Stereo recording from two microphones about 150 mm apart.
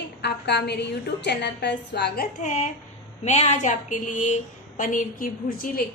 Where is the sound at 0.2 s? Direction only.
90° left.